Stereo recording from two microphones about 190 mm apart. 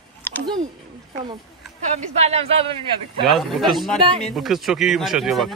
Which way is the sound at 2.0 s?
35° right (ahead or behind).